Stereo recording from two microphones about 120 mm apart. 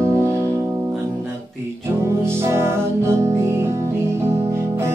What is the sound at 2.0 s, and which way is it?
Music, 20° right (ahead or behind).